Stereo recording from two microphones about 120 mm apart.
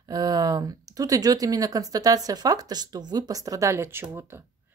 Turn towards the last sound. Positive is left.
turn(degrees=-20)  # may be behind; listen again after turning